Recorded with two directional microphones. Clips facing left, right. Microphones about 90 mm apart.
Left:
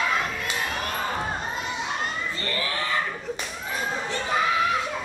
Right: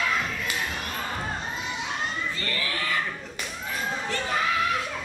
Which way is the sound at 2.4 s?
25° left (ahead or behind).